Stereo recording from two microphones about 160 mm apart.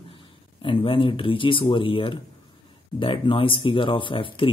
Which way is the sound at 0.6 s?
30° left (ahead or behind).